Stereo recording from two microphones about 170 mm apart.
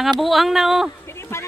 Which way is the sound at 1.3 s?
15° left (ahead or behind).